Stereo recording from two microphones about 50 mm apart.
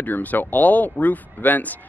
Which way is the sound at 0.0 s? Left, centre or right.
Left.